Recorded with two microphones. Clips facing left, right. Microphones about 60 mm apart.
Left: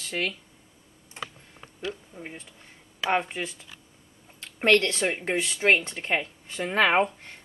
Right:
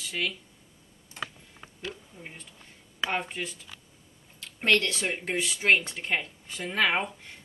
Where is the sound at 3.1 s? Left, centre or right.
Left.